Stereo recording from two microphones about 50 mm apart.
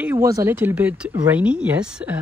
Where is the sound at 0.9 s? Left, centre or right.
Right.